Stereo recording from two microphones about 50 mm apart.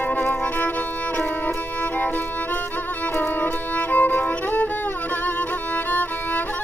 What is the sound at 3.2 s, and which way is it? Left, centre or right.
Music, left.